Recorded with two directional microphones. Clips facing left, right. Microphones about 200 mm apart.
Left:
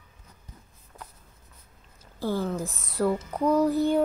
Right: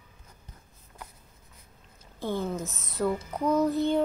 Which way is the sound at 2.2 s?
15° right (ahead or behind).